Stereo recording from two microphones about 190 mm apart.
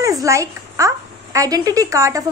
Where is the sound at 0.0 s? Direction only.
15° right (ahead or behind).